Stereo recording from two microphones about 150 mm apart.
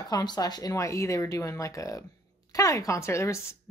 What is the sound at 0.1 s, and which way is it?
A woman's voice, 25° left (ahead or behind).